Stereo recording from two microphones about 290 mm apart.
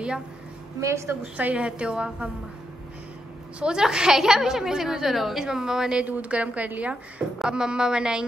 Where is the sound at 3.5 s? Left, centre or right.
Centre.